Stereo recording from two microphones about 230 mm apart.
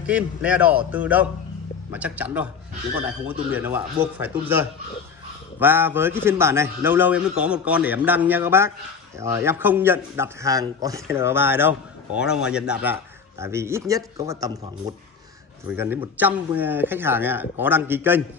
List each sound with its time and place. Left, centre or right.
0.0 s a man's voice: centre
15.7 s speech: centre